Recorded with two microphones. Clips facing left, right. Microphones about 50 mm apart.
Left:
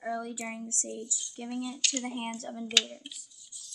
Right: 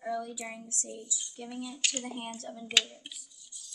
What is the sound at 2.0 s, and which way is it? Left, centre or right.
Speech, left.